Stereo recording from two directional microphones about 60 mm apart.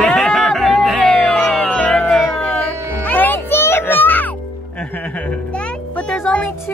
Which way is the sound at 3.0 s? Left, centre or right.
Left.